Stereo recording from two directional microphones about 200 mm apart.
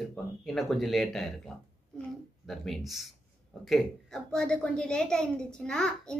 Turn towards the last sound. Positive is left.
turn(degrees=5)  # may be behind; listen again after turning